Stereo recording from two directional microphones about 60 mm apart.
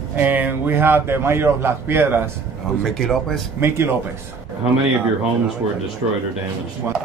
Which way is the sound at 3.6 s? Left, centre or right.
Right.